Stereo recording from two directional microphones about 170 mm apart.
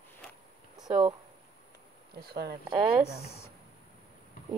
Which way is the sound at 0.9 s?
30° right (ahead or behind).